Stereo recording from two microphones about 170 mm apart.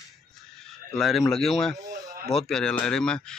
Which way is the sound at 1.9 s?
50° right (ahead or behind).